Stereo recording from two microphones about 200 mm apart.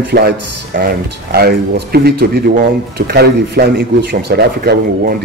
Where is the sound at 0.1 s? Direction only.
50° right (ahead or behind).